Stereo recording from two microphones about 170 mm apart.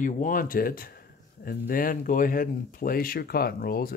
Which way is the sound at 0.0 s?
55° left (ahead or behind).